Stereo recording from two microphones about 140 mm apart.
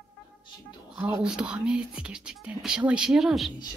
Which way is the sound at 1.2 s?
5° right (ahead or behind).